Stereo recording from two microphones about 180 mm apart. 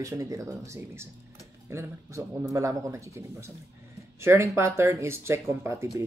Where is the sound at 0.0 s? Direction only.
20° right (ahead or behind).